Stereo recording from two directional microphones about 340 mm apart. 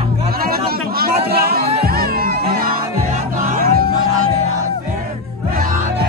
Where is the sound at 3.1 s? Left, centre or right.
Right.